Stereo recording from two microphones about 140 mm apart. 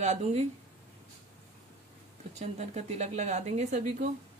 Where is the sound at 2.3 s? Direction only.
55° right (ahead or behind).